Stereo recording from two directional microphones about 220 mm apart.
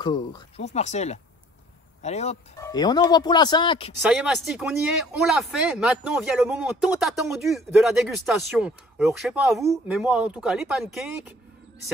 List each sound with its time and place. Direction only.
0.0 s speech: 20° left (ahead or behind)
0.7 s speech: 30° left (ahead or behind)
2.6 s speech: 20° left (ahead or behind)
4.0 s speech: 5° right (ahead or behind)